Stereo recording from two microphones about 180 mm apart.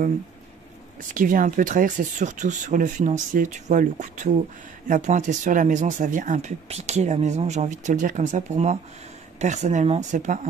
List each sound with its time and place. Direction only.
1.1 s speech: 50° right (ahead or behind)